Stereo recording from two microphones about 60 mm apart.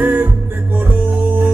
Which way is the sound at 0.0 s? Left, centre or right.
Right.